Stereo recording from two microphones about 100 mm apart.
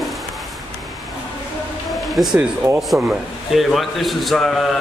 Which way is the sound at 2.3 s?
20° right (ahead or behind).